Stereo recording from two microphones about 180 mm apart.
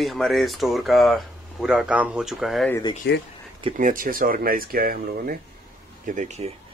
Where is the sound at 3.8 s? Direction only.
50° right (ahead or behind).